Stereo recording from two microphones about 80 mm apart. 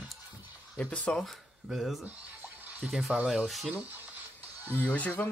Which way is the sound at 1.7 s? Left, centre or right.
Centre.